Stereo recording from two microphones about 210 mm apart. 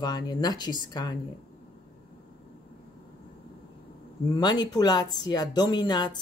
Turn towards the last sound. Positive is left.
turn(degrees=20)  # may be behind; listen again after turning